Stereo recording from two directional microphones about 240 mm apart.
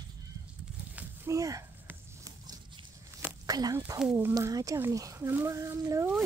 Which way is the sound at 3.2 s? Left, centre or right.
Centre.